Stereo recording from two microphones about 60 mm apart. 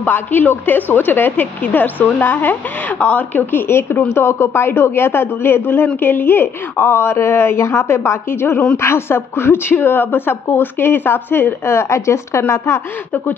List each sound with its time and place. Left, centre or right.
0.0 s a woman's voice: left